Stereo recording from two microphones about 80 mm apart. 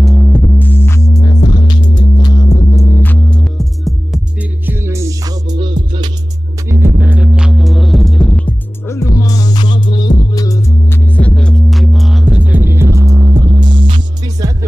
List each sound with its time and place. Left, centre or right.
0.0 s throbbing: centre
0.6 s music: left
1.2 s music: left
3.0 s hum: centre
4.4 s music: right
5.6 s music: right
6.7 s music: right; by 8.5 s centre
8.8 s music: left
9.6 s music: left
10.9 s music: left; by 12.4 s centre
12.4 s music: right
13.5 s hum: right
14.4 s music: right